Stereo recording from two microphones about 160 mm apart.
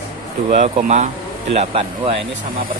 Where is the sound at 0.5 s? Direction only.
45° right (ahead or behind).